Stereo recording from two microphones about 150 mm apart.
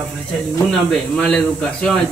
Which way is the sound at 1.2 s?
5° left (ahead or behind).